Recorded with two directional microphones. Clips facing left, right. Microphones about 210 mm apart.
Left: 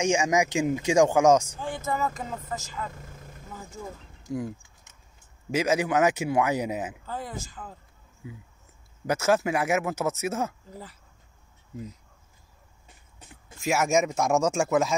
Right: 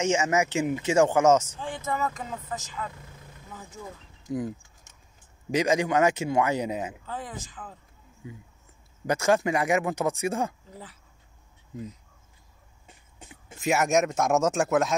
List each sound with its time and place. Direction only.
0.0 s speech: 10° left (ahead or behind)
2.9 s vehicle: 45° left (ahead or behind)
4.3 s speech: centre (ahead or behind)
13.3 s speech: centre (ahead or behind)